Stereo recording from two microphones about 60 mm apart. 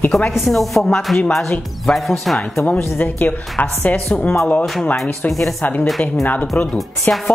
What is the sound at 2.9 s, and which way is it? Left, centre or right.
Speech, left.